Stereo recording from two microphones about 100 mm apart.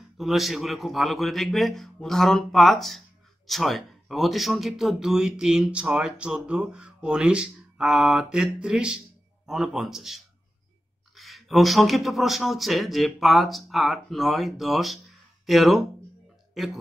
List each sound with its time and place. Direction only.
0.2 s speech: centre (ahead or behind)